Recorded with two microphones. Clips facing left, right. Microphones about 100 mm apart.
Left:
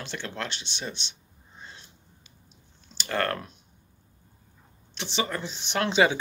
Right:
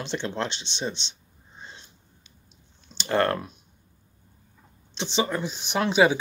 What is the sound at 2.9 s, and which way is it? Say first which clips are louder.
Typing: right 5 dB; 25° right (ahead or behind).